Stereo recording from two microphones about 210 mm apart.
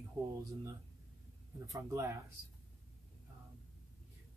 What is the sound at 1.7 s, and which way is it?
Speech, 15° right (ahead or behind).